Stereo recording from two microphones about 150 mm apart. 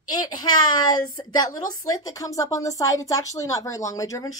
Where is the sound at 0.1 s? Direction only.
30° left (ahead or behind).